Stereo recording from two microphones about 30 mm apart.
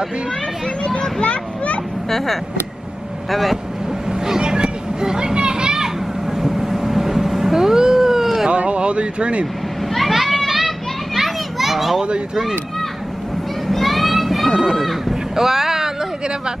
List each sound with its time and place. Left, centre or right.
0.8 s a sound: left
1.2 s a sound: left
2.0 s speech: centre
4.1 s children playing: right
6.3 s vehicle: centre
7.5 s cat: centre
8.5 s speech: right
9.9 s children playing: centre
13.7 s children playing: centre
14.5 s speech: right
14.8 s speech: centre
15.3 s vehicle: centre